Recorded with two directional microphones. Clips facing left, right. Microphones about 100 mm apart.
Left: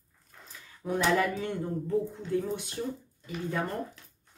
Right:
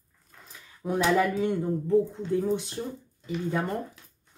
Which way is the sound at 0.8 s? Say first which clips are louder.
Right 3 dB; 15° right (ahead or behind).